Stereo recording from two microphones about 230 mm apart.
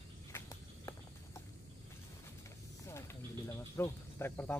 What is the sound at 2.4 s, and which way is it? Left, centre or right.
Vehicle, centre.